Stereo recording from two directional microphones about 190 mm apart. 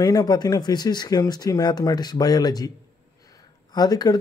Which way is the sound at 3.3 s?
20° left (ahead or behind).